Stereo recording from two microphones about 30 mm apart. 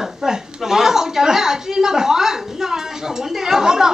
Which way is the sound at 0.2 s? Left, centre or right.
Centre.